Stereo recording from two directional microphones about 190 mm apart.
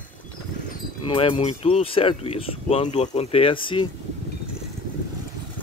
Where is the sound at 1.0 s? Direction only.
25° left (ahead or behind).